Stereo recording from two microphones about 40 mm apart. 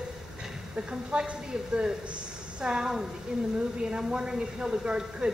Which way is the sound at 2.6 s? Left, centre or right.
Centre.